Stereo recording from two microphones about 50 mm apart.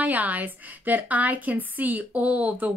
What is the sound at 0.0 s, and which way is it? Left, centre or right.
Speech, right.